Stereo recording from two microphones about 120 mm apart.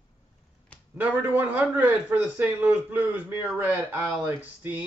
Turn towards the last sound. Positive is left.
turn(degrees=-15)  # may be behind; listen again after turning